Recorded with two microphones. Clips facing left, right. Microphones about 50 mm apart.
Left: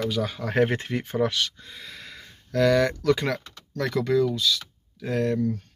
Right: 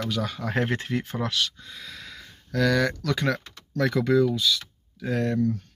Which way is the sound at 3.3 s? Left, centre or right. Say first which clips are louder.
Right 3 dB; centre.